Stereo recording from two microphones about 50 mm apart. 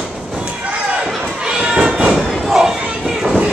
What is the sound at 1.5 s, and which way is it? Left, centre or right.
Cat, centre.